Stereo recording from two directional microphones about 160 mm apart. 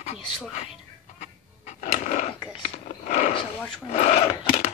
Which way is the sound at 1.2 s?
45° left (ahead or behind).